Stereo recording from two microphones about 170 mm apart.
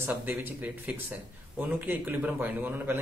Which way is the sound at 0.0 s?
10° right (ahead or behind).